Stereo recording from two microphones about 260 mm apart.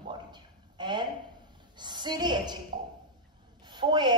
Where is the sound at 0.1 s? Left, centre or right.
Centre.